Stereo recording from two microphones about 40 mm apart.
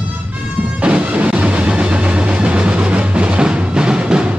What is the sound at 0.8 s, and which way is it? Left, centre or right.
Music, right.